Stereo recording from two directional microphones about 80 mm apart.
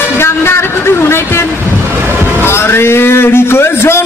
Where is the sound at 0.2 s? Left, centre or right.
Left.